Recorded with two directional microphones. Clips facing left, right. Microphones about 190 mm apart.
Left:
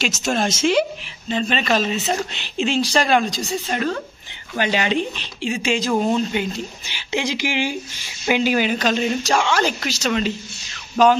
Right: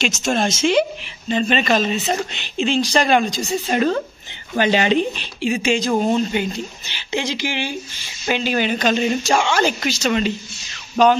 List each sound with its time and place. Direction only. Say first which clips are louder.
0.0 s speech: right 2 dB; 5° left (ahead or behind)
3.6 s speech: right 8 dB; 20° right (ahead or behind)
5.1 s speech: right 3 dB; 10° right (ahead or behind)